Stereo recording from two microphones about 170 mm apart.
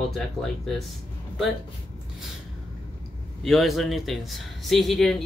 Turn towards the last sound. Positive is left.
turn(degrees=0)  # may be behind; listen again after turning